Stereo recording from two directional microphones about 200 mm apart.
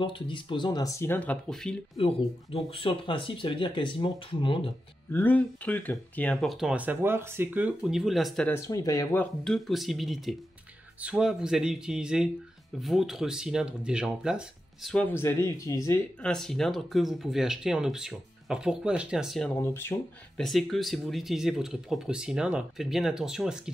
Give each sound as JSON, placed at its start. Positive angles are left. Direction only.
{"t": 0.0, "sound": "speech", "side_deg": 25}
{"t": 2.0, "sound": "speech", "side_deg": 25}
{"t": 5.1, "sound": "speech", "side_deg": 10}
{"t": 8.5, "sound": "speech", "side_deg": 15}
{"t": 16.2, "sound": "speech", "side_deg": 5}
{"t": 19.6, "sound": "speech", "side_deg": 10}